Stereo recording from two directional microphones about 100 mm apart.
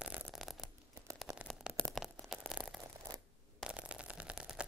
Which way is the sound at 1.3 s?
35° right (ahead or behind).